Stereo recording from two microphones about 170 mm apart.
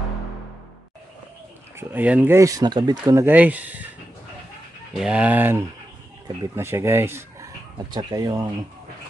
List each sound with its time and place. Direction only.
1.8 s speech: 10° right (ahead or behind)
5.0 s speech: 5° right (ahead or behind); by 8.5 s 25° right (ahead or behind)